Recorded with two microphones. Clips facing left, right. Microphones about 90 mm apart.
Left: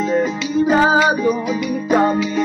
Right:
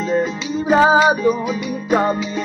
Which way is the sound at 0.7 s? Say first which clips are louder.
Right 3 dB; 20° right (ahead or behind).